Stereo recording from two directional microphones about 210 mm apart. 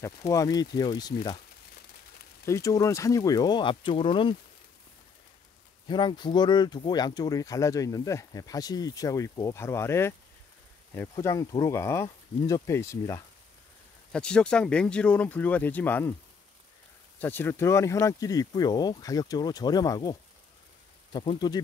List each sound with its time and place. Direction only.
0.3 s speech: 15° left (ahead or behind)
2.4 s speech: 15° left (ahead or behind)
5.9 s speech: 20° left (ahead or behind)
14.1 s speech: 5° left (ahead or behind)
17.2 s speech: 10° left (ahead or behind)